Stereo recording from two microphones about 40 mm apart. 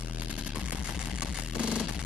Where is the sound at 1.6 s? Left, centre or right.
Right.